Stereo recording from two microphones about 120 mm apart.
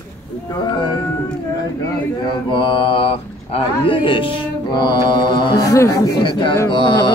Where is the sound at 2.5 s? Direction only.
45° left (ahead or behind); by 5.9 s 30° left (ahead or behind).